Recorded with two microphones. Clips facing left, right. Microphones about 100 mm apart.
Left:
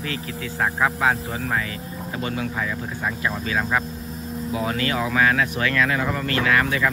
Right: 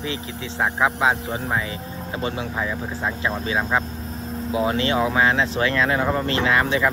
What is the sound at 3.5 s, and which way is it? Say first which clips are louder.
Speech: right 1 dB; 20° right (ahead or behind).